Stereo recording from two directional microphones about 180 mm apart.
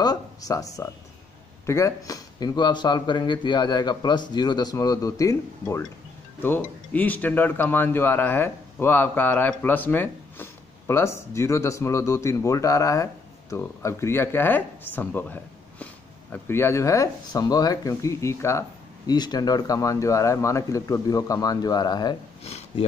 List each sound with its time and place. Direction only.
0.0 s a sound: 20° left (ahead or behind)
1.7 s speech: 15° left (ahead or behind)
22.4 s speech: 35° left (ahead or behind)